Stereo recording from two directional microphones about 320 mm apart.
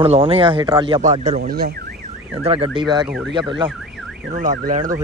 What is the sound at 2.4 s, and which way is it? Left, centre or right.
Speech, centre.